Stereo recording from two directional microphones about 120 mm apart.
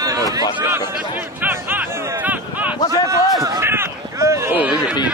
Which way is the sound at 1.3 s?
15° right (ahead or behind).